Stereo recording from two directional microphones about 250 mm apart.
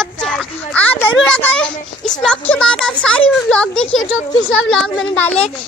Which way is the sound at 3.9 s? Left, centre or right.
Left.